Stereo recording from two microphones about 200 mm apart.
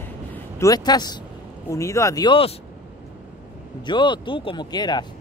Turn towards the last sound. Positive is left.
turn(degrees=20)  # may be behind; listen again after turning